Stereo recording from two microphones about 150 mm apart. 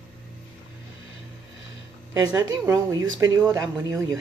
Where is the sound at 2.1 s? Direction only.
25° right (ahead or behind).